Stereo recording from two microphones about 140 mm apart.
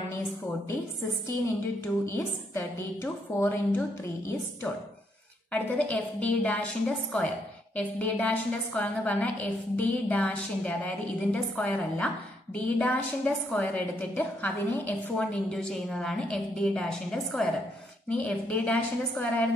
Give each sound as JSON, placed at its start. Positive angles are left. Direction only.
{"t": 2.1, "sound": "a woman's voice", "side_deg": 20}
{"t": 5.5, "sound": "a woman's voice", "side_deg": 10}